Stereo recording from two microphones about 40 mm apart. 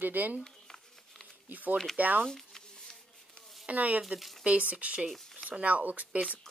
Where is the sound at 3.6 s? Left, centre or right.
Right.